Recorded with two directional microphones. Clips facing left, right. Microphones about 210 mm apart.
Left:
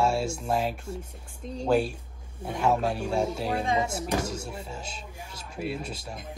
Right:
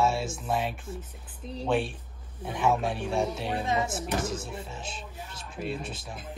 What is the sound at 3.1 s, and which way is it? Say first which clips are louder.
Speech: left 1 dB; centre (ahead or behind).